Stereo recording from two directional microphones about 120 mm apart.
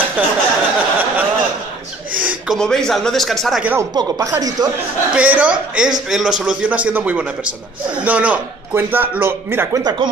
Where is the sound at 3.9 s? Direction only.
35° right (ahead or behind).